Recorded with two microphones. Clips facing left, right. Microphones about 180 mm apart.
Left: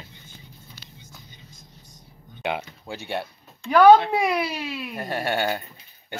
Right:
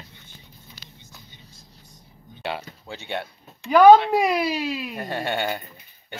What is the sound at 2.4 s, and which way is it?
Speech, 15° left (ahead or behind).